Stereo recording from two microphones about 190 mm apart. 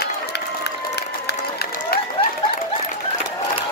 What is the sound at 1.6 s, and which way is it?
Applause, 50° left (ahead or behind).